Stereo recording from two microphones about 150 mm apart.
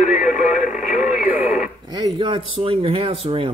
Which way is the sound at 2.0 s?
35° right (ahead or behind).